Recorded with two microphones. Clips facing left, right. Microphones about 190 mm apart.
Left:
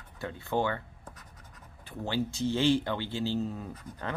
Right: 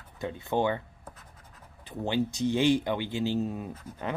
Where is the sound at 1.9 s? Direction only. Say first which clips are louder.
Right 3 dB; 20° right (ahead or behind).